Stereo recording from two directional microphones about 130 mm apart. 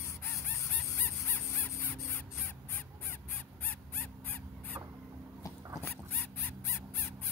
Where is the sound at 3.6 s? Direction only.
15° left (ahead or behind).